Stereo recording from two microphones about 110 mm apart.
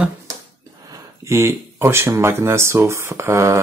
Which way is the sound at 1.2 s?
25° right (ahead or behind).